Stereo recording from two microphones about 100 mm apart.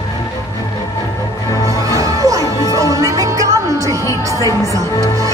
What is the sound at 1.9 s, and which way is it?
Music, 35° right (ahead or behind).